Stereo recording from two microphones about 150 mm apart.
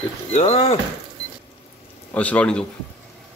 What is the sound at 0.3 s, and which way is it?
Speech, 45° left (ahead or behind).